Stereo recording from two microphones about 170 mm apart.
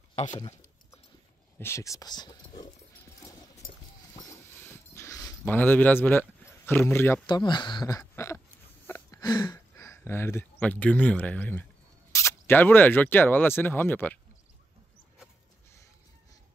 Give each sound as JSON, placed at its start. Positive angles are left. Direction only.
{"t": 0.2, "sound": "speech", "side_deg": 40}
{"t": 1.6, "sound": "speech", "side_deg": 15}
{"t": 4.1, "sound": "dog", "side_deg": 15}
{"t": 5.4, "sound": "speech", "side_deg": 10}
{"t": 7.2, "sound": "speech", "side_deg": 25}
{"t": 8.8, "sound": "a sound", "side_deg": 10}
{"t": 9.2, "sound": "speech", "side_deg": 25}